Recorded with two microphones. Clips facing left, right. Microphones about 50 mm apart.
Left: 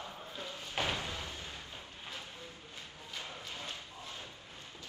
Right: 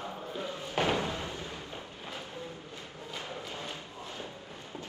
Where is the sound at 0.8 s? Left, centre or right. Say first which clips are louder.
Right 6 dB; right.